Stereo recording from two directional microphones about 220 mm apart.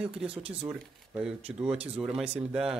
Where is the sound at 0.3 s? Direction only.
25° right (ahead or behind).